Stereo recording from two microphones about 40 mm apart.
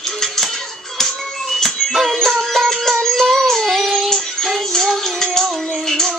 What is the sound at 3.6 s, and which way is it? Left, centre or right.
Music, centre.